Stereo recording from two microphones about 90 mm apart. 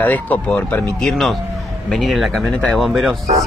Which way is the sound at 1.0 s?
5° left (ahead or behind).